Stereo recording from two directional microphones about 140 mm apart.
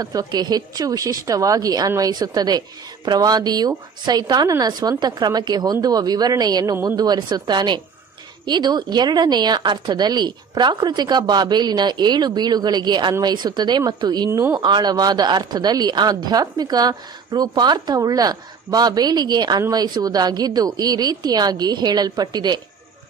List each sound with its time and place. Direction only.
0.0 s a woman's voice: 25° right (ahead or behind)